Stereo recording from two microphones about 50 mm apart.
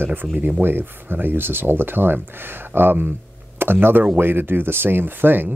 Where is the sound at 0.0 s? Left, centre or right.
Right.